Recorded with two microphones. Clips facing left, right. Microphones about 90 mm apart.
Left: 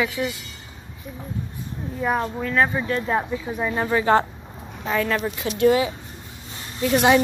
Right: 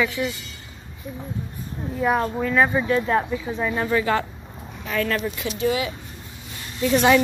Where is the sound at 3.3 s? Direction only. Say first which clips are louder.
Even; 15° left (ahead or behind).